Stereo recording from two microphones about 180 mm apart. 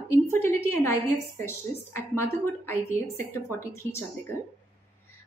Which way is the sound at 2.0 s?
10° left (ahead or behind).